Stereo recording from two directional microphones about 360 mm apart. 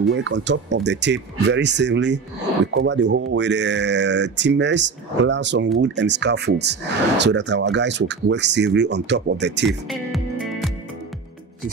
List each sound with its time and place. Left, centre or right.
0.1 s speech: right
9.8 s music: centre